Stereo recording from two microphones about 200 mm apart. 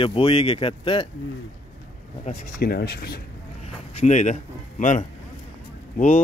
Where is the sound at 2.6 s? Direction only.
50° left (ahead or behind).